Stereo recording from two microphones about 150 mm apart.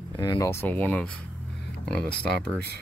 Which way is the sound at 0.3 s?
20° left (ahead or behind).